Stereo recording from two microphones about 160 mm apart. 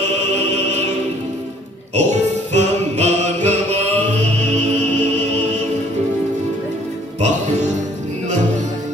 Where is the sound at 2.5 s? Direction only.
45° right (ahead or behind).